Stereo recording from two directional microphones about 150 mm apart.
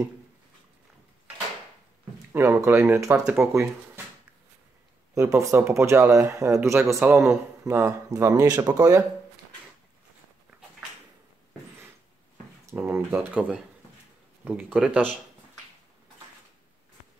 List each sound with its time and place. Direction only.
2.3 s speech: 15° right (ahead or behind)
5.1 s speech: 20° right (ahead or behind)
12.6 s speech: 15° right (ahead or behind)